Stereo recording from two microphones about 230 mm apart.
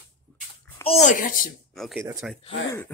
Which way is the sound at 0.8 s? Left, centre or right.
Left.